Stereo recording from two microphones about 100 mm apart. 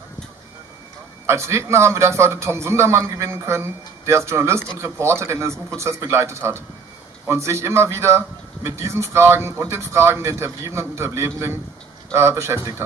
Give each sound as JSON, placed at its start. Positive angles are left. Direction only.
{"t": 1.2, "sound": "a man's voice", "side_deg": -30}